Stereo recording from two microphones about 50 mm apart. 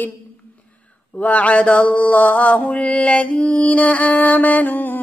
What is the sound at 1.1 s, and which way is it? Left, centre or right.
Mantra, left.